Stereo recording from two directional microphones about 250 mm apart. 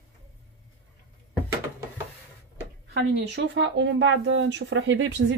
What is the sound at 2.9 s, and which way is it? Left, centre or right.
Speech, right.